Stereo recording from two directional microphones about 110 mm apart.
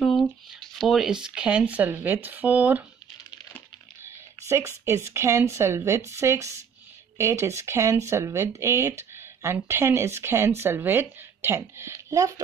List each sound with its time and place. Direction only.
0.0 s a sound: centre (ahead or behind)
1.2 s speech: 10° right (ahead or behind)
4.5 s speech: 25° right (ahead or behind)